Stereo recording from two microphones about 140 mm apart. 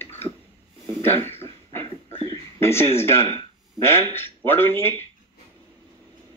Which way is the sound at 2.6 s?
20° left (ahead or behind).